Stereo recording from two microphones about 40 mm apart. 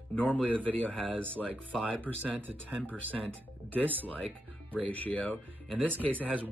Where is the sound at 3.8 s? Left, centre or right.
Right.